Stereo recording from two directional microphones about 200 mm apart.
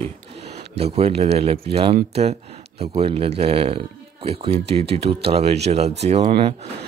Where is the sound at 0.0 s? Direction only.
30° right (ahead or behind).